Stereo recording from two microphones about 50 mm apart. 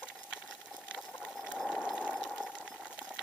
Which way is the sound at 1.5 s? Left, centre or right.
Centre.